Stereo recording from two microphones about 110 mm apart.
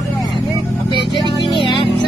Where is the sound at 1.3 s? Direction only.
45° left (ahead or behind).